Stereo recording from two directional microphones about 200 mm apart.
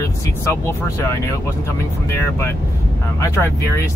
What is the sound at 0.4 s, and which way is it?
Speech, 15° left (ahead or behind).